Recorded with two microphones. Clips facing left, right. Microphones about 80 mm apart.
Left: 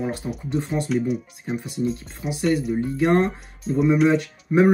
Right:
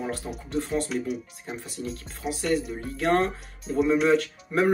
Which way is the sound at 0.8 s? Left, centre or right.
Centre.